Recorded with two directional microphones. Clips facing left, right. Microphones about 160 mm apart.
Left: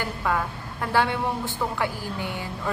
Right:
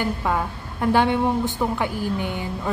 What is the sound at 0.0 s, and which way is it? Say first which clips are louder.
A woman's voice: right 3 dB; 20° right (ahead or behind).